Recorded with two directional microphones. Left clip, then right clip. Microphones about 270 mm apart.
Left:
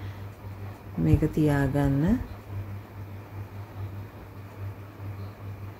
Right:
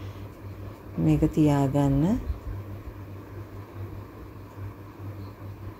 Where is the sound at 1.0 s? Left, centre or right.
Centre.